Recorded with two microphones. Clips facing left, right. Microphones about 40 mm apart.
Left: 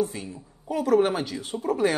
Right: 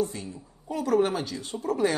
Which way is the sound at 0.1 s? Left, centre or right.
Centre.